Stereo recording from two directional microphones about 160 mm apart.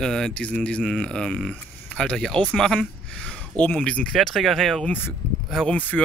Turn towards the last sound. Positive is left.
turn(degrees=5)  # may be behind; listen again after turning